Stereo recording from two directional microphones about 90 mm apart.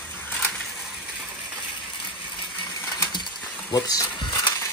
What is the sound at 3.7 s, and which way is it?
Speech, 40° left (ahead or behind).